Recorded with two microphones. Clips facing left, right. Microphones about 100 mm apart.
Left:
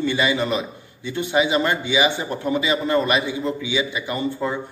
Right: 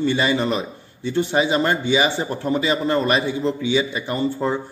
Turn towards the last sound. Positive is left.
turn(degrees=-35)  # may be behind; listen again after turning